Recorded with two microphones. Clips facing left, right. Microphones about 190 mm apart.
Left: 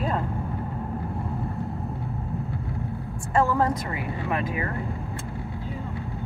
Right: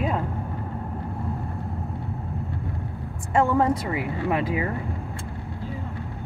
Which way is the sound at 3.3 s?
25° right (ahead or behind).